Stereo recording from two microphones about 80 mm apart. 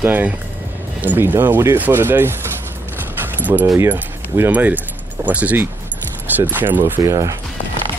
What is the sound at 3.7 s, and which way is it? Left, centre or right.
Speech, right.